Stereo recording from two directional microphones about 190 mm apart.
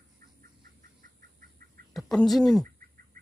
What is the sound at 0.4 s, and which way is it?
Chicken, 50° right (ahead or behind).